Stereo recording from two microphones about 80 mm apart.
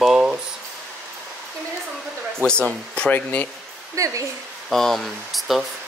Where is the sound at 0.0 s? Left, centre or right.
Centre.